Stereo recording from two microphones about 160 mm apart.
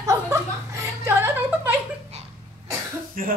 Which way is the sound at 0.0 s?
20° right (ahead or behind).